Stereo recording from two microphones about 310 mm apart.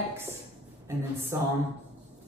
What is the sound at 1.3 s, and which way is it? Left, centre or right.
Speech, centre.